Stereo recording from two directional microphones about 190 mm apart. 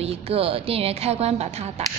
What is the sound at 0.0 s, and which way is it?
A woman's voice, 30° right (ahead or behind).